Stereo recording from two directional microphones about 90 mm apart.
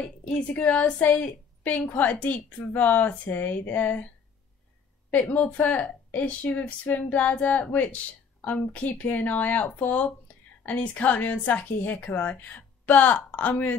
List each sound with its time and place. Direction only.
0.6 s speech: 15° left (ahead or behind)
5.1 s speech: 15° left (ahead or behind)